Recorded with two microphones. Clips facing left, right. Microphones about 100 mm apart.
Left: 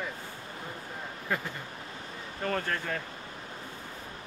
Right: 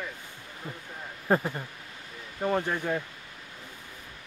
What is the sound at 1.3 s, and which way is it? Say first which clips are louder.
Speech: right 8 dB; 35° right (ahead or behind).